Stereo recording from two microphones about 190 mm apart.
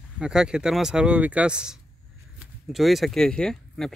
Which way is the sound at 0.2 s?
5° right (ahead or behind).